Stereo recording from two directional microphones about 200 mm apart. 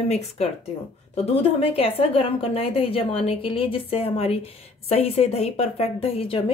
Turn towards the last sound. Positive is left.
turn(degrees=30)  # may be behind; listen again after turning